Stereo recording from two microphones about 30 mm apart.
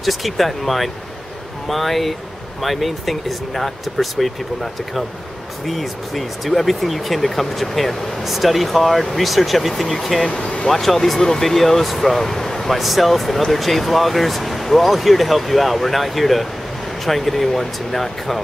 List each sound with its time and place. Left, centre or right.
0.0 s speech: centre
5.7 s speech: centre
11.1 s speech: centre
11.4 s speech: centre
12.7 s speech: centre